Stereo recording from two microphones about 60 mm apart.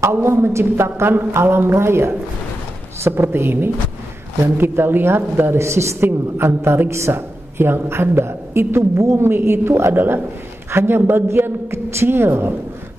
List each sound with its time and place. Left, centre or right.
0.0 s a woman's voice: right
5.9 s a woman's voice: right